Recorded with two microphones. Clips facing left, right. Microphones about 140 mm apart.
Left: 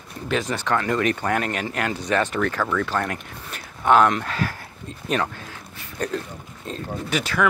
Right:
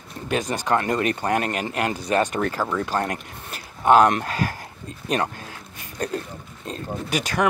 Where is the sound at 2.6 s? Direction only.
25° right (ahead or behind).